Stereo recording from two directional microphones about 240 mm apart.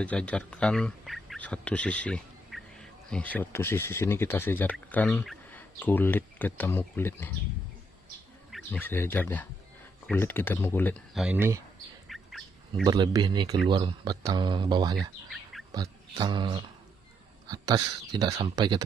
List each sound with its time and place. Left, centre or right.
0.0 s speech: centre
8.5 s speech: centre
11.2 s speech: centre
12.1 s bird: centre
12.8 s speech: centre
15.0 s speech: centre
15.7 s speech: centre